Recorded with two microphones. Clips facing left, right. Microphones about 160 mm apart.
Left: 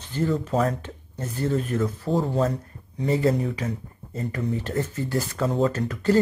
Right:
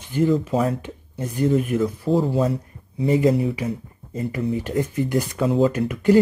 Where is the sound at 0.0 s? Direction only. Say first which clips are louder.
Right 6 dB; 15° right (ahead or behind).